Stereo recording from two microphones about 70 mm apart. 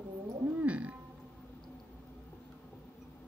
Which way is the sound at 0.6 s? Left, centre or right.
Centre.